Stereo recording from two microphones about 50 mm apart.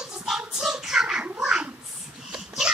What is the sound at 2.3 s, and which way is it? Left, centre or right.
Dog, centre.